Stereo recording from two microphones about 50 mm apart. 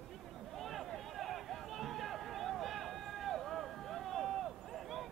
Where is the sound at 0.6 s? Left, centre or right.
Centre.